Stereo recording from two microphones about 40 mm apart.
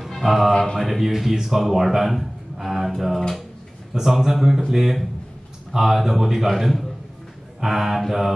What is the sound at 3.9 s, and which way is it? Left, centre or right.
A man's voice, centre.